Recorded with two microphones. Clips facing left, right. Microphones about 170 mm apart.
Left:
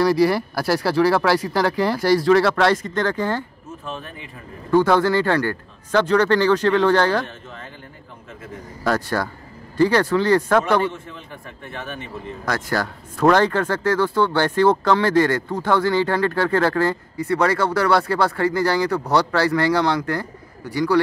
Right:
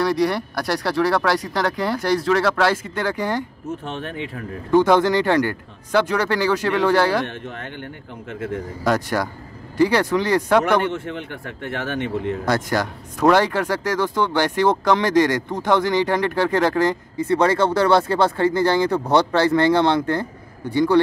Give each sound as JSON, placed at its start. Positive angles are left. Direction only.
{"t": 0.0, "sound": "speech", "side_deg": 5}
{"t": 3.6, "sound": "a man's voice", "side_deg": -80}
{"t": 4.6, "sound": "speech", "side_deg": -15}
{"t": 7.2, "sound": "speech", "side_deg": -70}
{"t": 8.8, "sound": "speech", "side_deg": -15}
{"t": 10.9, "sound": "a man's voice", "side_deg": -80}
{"t": 12.4, "sound": "speech", "side_deg": -20}